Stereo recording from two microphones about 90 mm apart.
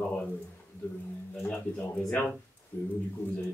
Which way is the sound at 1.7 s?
20° left (ahead or behind).